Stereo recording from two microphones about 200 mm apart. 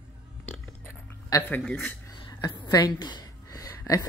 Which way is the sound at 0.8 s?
10° left (ahead or behind).